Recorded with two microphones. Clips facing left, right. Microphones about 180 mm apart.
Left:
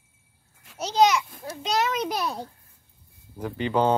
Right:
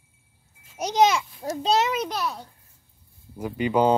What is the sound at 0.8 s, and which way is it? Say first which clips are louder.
A child's voice: even; 20° right (ahead or behind).